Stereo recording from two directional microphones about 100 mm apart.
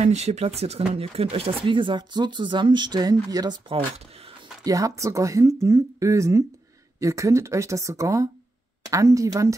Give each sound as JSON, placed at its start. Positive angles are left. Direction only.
{"t": 0.0, "sound": "speech", "side_deg": -90}
{"t": 0.9, "sound": "speech", "side_deg": -75}
{"t": 4.6, "sound": "speech", "side_deg": -35}